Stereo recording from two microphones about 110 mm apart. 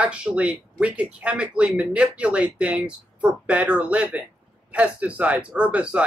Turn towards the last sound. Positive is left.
turn(degrees=-10)  # may be behind; listen again after turning